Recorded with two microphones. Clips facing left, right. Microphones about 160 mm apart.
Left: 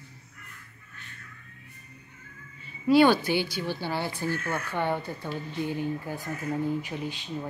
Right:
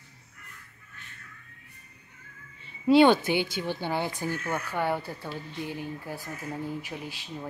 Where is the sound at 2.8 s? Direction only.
25° right (ahead or behind); by 7.3 s 5° right (ahead or behind).